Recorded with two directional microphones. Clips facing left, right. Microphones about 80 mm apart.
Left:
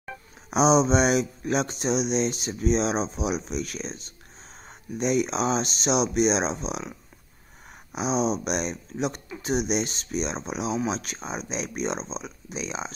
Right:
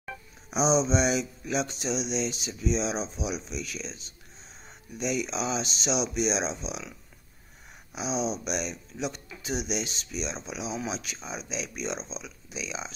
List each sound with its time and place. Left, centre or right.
0.5 s speech: left
7.9 s speech: left